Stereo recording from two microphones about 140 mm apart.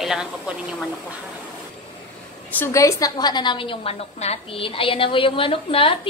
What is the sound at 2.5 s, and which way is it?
A woman's voice, 20° left (ahead or behind).